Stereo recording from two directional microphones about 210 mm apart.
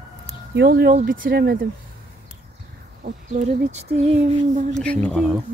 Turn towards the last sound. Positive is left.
turn(degrees=5)  # may be behind; listen again after turning